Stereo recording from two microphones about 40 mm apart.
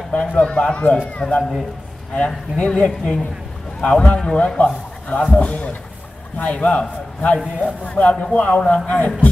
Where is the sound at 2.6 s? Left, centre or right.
Left.